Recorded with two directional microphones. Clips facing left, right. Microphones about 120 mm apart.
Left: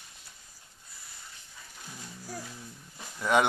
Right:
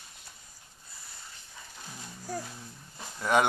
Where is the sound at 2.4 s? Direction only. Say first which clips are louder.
Right 1 dB; 15° right (ahead or behind).